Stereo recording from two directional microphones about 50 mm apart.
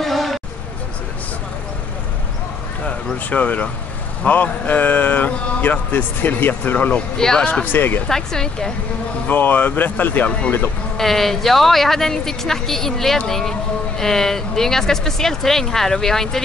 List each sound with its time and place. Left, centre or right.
0.0 s a sound: centre
3.3 s speech: left
6.9 s a woman's voice: centre
7.6 s speech: left
8.1 s a woman's voice: centre
9.3 s speech: left
11.0 s a woman's voice: centre